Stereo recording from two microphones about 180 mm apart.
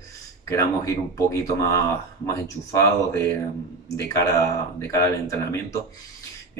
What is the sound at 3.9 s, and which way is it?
Speech, 20° left (ahead or behind).